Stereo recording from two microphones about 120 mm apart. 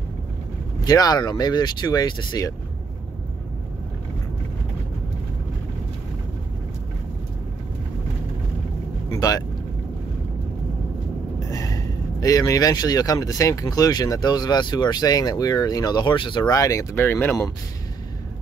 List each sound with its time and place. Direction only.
0.8 s speech: 35° left (ahead or behind)
9.1 s vehicle: 30° left (ahead or behind)
11.3 s speech: 30° left (ahead or behind)